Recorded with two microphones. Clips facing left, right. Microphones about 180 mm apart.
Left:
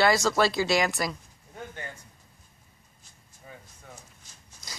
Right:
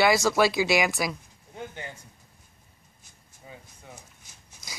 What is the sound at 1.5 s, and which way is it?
Speech, 20° right (ahead or behind).